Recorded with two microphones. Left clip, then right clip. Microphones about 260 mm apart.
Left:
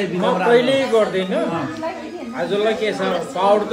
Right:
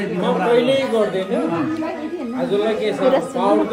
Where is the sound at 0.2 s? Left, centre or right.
Left.